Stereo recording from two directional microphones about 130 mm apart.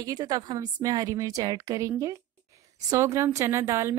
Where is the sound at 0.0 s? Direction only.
30° right (ahead or behind).